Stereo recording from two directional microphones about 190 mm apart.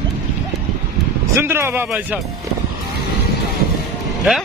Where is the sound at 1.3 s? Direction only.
15° right (ahead or behind).